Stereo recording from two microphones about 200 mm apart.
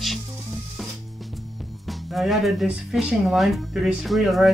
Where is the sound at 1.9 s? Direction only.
Centre (ahead or behind).